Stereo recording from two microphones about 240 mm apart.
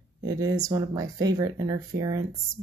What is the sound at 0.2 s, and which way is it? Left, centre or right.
Speech, centre.